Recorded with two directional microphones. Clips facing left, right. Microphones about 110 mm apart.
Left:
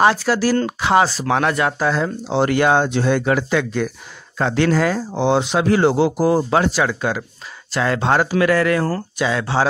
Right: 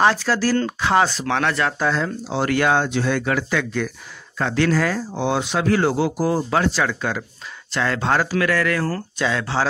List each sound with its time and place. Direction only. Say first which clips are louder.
0.0 s speech: left 2 dB; 10° left (ahead or behind)
6.7 s speech: left 3 dB; 10° left (ahead or behind)
8.9 s speech: left 2 dB; 10° left (ahead or behind)